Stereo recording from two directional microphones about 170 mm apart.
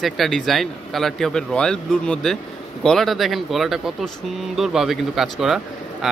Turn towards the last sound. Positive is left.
turn(degrees=0)  # may be behind; listen again after turning